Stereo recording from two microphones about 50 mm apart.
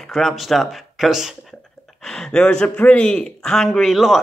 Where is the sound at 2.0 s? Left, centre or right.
Centre.